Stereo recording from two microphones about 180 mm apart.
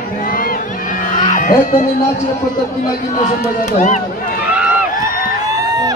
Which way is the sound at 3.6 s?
40° left (ahead or behind).